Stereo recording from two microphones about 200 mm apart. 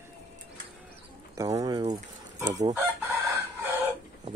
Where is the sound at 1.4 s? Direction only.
15° right (ahead or behind).